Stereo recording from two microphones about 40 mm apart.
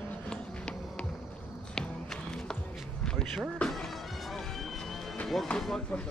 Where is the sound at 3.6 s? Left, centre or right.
Left.